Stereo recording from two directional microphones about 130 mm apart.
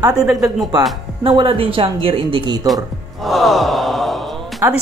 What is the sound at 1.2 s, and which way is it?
Speech, 45° right (ahead or behind).